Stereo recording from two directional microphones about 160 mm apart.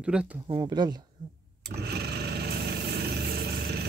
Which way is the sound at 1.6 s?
90° right.